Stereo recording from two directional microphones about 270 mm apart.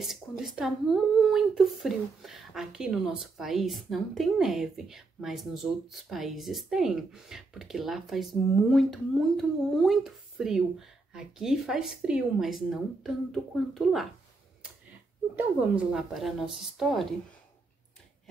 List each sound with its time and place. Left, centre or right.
0.0 s speech: centre
15.3 s speech: centre